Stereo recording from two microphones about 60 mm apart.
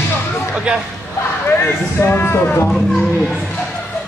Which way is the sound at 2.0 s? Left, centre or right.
Left.